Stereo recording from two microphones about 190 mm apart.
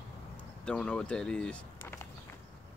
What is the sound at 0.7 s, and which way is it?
Speech, 5° left (ahead or behind).